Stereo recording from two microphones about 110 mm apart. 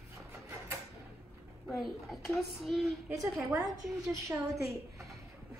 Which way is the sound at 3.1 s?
30° right (ahead or behind).